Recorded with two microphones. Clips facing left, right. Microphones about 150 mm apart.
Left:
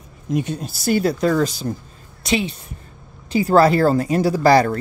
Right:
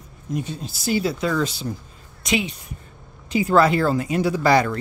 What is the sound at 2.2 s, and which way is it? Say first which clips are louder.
Speech: left 2 dB; 30° left (ahead or behind).